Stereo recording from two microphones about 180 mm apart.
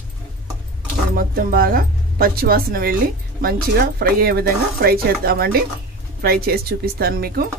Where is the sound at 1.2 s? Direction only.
55° right (ahead or behind).